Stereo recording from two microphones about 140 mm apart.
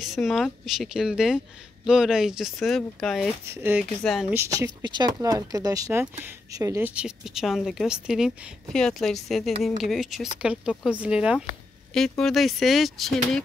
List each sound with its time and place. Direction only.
0.0 s speech: centre (ahead or behind)
3.4 s speech: 15° right (ahead or behind)
4.0 s speech: centre (ahead or behind)
4.3 s speech: 20° right (ahead or behind)
4.8 s speech: 30° right (ahead or behind)
6.9 s speech: 5° right (ahead or behind)